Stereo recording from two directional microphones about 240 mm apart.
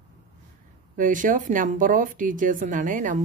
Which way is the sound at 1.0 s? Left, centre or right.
Right.